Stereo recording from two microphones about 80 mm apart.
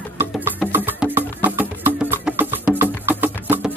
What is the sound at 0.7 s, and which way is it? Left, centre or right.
Music, right.